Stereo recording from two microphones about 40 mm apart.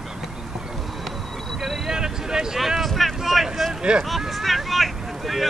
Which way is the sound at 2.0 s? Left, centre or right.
Centre.